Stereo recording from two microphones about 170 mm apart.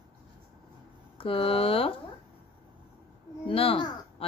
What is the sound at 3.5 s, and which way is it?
Speech, 30° left (ahead or behind).